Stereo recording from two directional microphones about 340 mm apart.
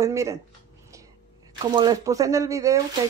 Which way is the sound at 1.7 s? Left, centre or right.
Centre.